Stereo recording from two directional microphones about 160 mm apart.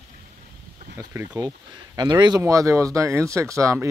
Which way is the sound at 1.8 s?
25° right (ahead or behind).